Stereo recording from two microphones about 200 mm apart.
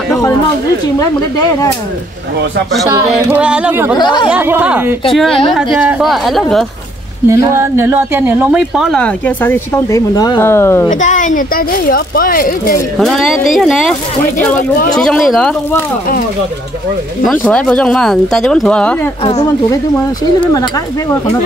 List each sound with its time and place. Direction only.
3.0 s yodeling: 10° right (ahead or behind)
3.9 s speech: 20° left (ahead or behind)
4.3 s yodeling: 10° right (ahead or behind)
5.1 s speech: centre (ahead or behind)
7.2 s speech: 15° right (ahead or behind); by 10.9 s 10° left (ahead or behind)
10.9 s speech: 40° left (ahead or behind)
13.0 s speech: centre (ahead or behind)
15.0 s speech: centre (ahead or behind)
17.3 s speech: 5° left (ahead or behind)
19.2 s speech: 20° left (ahead or behind)